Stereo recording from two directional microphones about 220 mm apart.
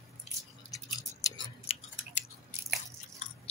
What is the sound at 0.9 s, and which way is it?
Tick-tock, 20° left (ahead or behind).